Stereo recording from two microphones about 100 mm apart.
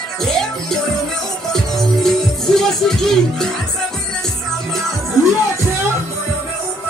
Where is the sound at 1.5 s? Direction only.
5° left (ahead or behind).